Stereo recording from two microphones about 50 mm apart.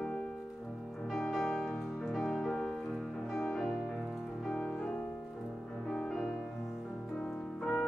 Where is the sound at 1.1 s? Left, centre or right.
Centre.